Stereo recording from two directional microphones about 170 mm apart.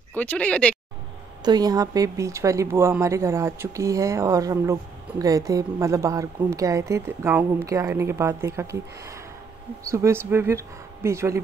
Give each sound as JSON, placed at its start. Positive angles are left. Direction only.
{"t": 0.1, "sound": "speech", "side_deg": 10}
{"t": 1.4, "sound": "speech", "side_deg": -25}